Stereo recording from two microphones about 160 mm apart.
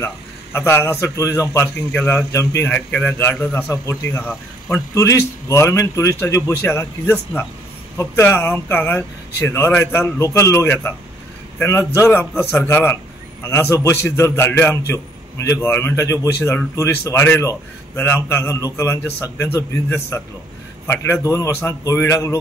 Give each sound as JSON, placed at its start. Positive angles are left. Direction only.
{"t": 0.0, "sound": "a man's voice", "side_deg": 15}
{"t": 11.9, "sound": "a man's voice", "side_deg": 15}